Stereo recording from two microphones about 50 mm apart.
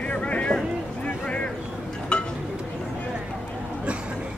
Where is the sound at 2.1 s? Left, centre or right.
Centre.